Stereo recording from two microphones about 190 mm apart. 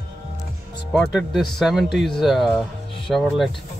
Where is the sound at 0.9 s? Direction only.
Centre (ahead or behind).